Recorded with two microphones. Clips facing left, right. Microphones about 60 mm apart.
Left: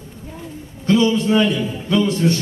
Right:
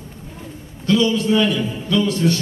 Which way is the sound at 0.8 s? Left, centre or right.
Left.